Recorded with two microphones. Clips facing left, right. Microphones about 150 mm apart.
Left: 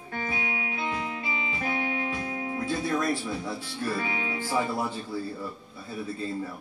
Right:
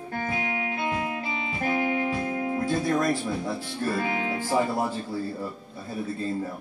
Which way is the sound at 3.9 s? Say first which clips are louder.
Right 4 dB; 50° right (ahead or behind).